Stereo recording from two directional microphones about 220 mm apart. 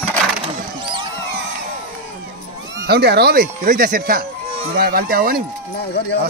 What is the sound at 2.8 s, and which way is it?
Speech, 45° right (ahead or behind).